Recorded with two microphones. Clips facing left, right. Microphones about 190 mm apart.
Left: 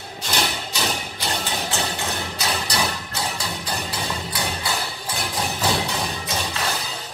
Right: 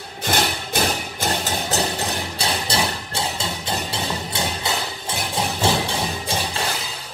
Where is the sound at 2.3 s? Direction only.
30° right (ahead or behind).